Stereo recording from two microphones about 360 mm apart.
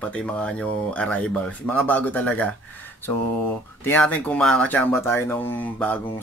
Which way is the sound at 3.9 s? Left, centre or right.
Centre.